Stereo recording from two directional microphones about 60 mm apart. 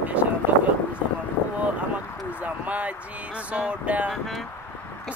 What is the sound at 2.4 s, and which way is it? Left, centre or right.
Speech, right.